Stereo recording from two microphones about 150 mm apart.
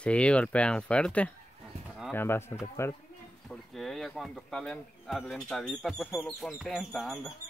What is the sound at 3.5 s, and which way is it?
Speech, centre (ahead or behind).